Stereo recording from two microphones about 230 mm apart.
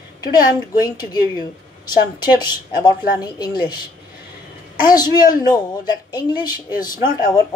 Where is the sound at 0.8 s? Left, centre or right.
Centre.